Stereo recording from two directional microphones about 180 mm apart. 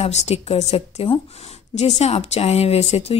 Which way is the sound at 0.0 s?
35° left (ahead or behind).